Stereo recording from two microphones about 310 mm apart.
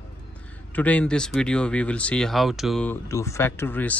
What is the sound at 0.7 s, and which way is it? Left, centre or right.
Speech, centre.